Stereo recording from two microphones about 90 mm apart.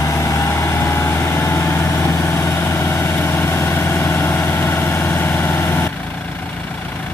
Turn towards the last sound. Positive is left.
turn(degrees=25)  # may be behind; listen again after turning